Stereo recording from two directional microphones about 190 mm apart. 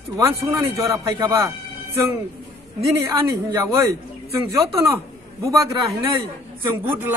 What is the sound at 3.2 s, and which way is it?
Speech, 15° right (ahead or behind).